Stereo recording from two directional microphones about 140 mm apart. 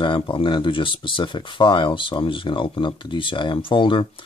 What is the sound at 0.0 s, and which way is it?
Speech, 35° left (ahead or behind).